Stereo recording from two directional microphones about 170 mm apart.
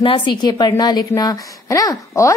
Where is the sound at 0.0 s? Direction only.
30° left (ahead or behind).